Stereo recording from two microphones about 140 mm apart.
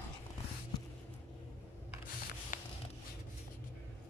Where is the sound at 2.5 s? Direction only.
65° left (ahead or behind).